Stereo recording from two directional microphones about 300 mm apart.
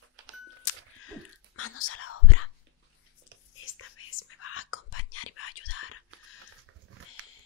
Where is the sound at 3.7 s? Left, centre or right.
Left.